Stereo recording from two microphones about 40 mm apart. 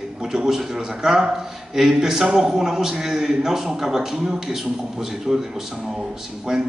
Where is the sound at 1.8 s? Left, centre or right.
Centre.